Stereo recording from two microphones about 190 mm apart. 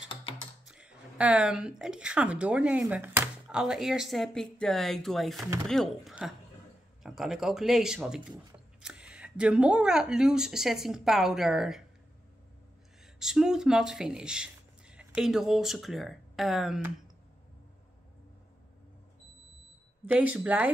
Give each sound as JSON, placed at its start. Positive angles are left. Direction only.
{"t": 0.1, "sound": "computer keyboard", "side_deg": 25}
{"t": 0.7, "sound": "a woman's voice", "side_deg": -5}
{"t": 13.0, "sound": "speech", "side_deg": -5}
{"t": 20.1, "sound": "speech", "side_deg": -10}